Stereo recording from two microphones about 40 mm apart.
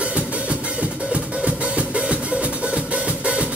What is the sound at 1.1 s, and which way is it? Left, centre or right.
Music, right.